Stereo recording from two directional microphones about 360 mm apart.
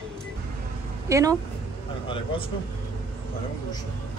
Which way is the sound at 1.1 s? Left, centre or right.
Centre.